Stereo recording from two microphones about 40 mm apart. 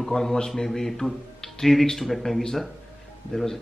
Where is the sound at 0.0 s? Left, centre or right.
Centre.